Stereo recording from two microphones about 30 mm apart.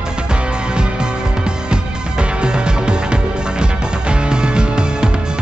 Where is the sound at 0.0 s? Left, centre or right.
Right.